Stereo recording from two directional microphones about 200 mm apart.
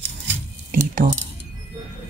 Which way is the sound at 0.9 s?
45° right (ahead or behind).